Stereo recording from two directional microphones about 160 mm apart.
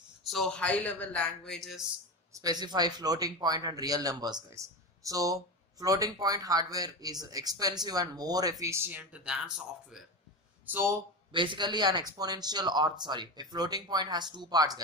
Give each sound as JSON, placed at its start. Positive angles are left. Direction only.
{"t": 0.2, "sound": "a man's voice", "side_deg": 0}
{"t": 2.3, "sound": "a man's voice", "side_deg": -25}
{"t": 11.3, "sound": "a man's voice", "side_deg": -30}